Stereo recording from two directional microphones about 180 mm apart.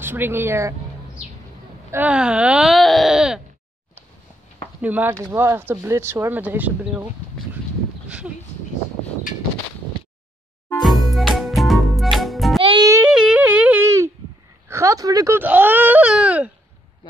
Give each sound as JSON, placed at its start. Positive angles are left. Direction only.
{"t": 0.0, "sound": "speech", "side_deg": -10}
{"t": 1.9, "sound": "speech", "side_deg": -10}
{"t": 4.8, "sound": "speech", "side_deg": -10}
{"t": 10.8, "sound": "music", "side_deg": 0}
{"t": 12.6, "sound": "music", "side_deg": -20}
{"t": 13.1, "sound": "a sound", "side_deg": -5}
{"t": 14.7, "sound": "speech", "side_deg": -15}
{"t": 17.0, "sound": "a sound", "side_deg": 25}